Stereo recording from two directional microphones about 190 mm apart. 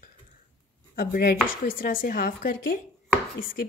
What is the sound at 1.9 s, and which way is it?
Speech, 50° left (ahead or behind).